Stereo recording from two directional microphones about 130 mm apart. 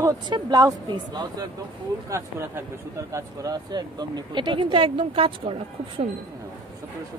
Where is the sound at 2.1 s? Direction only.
20° right (ahead or behind); by 6.1 s 45° right (ahead or behind).